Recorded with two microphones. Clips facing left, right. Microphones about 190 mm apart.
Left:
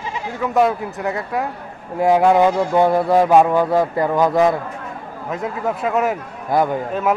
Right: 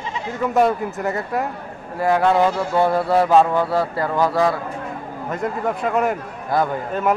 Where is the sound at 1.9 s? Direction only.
15° left (ahead or behind).